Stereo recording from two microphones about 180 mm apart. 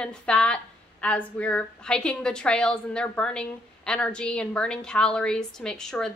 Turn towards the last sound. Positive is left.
turn(degrees=5)  # may be behind; listen again after turning